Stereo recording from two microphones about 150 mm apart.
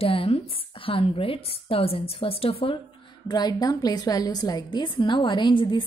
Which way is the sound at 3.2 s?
30° left (ahead or behind).